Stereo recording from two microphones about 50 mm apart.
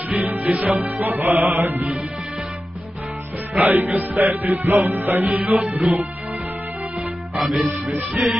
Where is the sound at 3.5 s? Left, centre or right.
Right.